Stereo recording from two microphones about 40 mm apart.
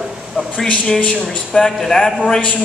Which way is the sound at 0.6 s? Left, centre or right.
Left.